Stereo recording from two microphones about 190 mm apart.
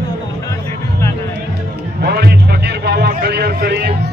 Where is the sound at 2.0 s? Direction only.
60° right (ahead or behind).